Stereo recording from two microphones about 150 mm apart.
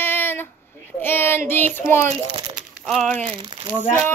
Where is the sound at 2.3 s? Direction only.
35° right (ahead or behind).